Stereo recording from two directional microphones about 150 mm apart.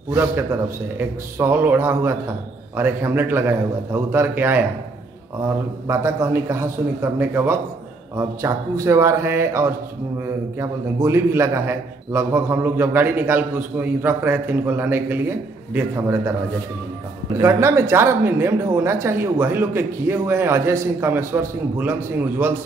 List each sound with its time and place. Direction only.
0.1 s speech: 15° right (ahead or behind)
5.9 s speech: 15° right (ahead or behind)
17.4 s speech: 20° right (ahead or behind)